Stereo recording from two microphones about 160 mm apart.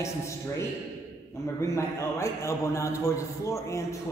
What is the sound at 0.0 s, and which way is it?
A man's voice, 15° left (ahead or behind).